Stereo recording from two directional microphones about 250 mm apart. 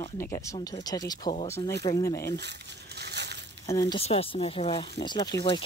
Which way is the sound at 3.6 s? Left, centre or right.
Centre.